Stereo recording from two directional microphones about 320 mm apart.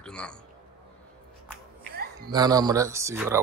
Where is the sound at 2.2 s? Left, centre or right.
Centre.